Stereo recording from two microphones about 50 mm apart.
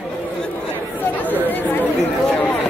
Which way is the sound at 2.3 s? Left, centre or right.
Left.